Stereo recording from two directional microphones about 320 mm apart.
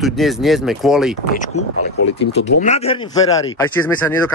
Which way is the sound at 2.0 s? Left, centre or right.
Left.